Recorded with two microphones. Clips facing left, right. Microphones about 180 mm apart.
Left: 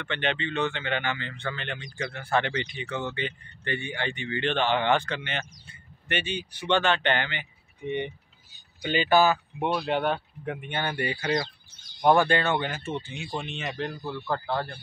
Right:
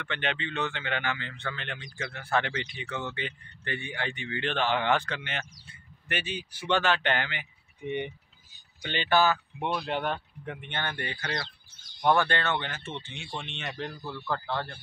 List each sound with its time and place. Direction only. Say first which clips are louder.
0.0 s speech: left 3 dB; centre (ahead or behind)
8.8 s speech: left 4 dB; 10° left (ahead or behind)
13.9 s speech: left 3 dB; 15° left (ahead or behind)